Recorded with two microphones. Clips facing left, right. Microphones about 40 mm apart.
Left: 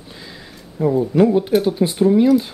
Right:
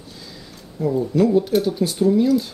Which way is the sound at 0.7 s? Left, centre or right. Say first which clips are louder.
Left 4 dB; left.